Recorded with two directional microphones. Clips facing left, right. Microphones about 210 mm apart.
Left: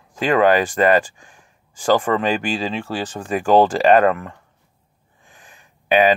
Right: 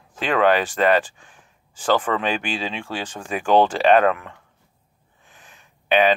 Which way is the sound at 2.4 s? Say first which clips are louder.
Left 4 dB; 40° left (ahead or behind).